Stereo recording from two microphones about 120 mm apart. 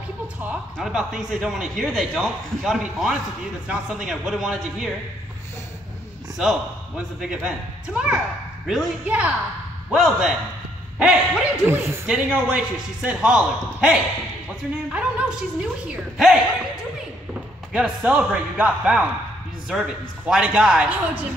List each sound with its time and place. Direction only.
0.5 s speech: 5° right (ahead or behind)
6.4 s a man's voice: 5° right (ahead or behind)
11.6 s a man's voice: 20° right (ahead or behind); by 16.3 s 5° right (ahead or behind)
17.7 s a man's voice: 10° right (ahead or behind)